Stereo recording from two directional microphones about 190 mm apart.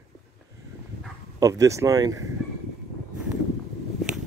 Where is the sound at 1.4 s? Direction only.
15° right (ahead or behind).